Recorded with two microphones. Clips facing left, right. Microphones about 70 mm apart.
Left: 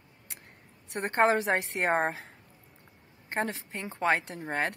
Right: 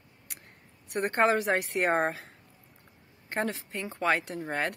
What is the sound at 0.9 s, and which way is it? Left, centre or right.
Speech, left.